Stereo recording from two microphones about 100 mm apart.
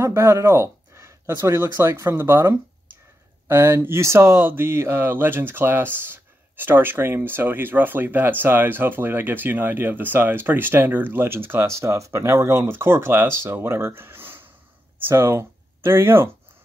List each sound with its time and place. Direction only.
0.0 s speech: 30° right (ahead or behind)